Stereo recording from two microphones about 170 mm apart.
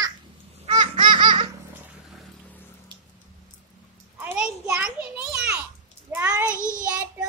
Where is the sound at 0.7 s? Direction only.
30° right (ahead or behind).